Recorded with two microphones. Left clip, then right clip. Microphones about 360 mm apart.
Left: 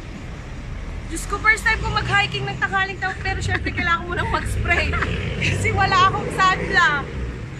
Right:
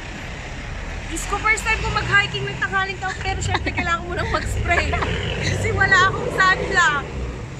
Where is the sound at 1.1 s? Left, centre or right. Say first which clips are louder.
Left 2 dB; centre.